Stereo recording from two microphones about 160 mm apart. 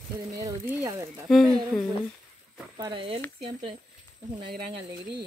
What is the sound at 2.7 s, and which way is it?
Speech, 30° right (ahead or behind).